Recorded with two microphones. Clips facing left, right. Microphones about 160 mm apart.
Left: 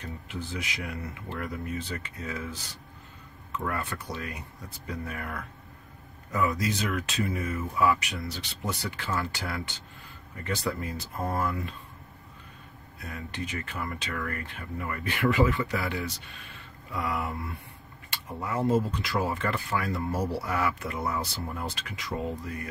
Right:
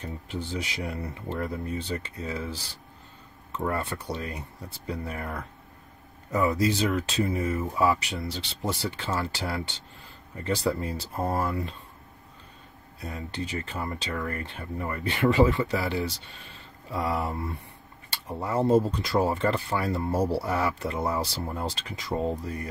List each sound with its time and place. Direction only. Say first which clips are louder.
0.5 s speech: right 3 dB; 30° right (ahead or behind)
13.0 s speech: right 3 dB; 30° right (ahead or behind)